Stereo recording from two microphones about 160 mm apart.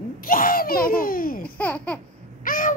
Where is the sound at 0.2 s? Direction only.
60° left (ahead or behind).